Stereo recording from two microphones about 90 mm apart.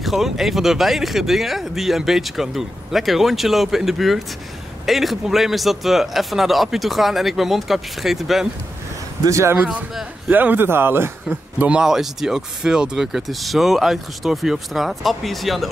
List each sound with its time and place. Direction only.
0.0 s speech: centre (ahead or behind)
9.2 s a man's voice: 35° right (ahead or behind)
11.7 s speech: 5° right (ahead or behind)